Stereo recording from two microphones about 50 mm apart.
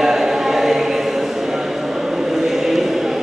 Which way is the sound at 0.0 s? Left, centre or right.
Centre.